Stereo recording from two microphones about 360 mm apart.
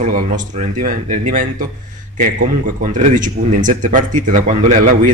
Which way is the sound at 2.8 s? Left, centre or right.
Centre.